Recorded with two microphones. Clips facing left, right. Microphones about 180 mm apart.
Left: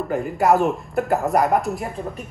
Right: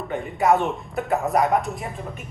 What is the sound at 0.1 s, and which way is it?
Speech, centre (ahead or behind).